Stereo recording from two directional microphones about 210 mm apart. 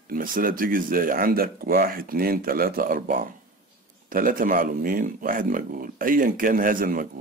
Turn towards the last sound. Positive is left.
turn(degrees=-40)  # may be behind; listen again after turning